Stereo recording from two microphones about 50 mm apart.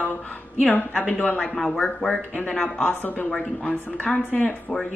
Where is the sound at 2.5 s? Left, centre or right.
Centre.